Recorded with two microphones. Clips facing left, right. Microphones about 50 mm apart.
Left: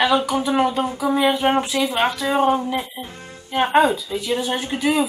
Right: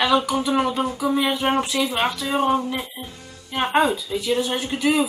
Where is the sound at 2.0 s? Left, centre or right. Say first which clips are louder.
Left 3 dB; centre.